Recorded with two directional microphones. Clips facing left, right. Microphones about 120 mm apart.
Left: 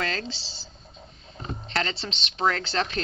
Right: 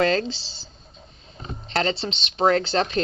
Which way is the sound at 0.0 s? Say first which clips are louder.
Right 10 dB; 30° right (ahead or behind).